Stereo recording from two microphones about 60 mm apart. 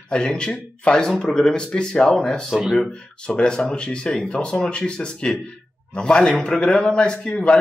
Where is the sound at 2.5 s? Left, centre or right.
Centre.